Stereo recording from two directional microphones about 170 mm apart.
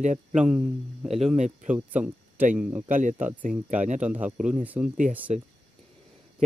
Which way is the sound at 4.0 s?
10° right (ahead or behind).